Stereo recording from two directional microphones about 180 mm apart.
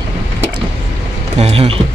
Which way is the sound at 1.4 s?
30° right (ahead or behind).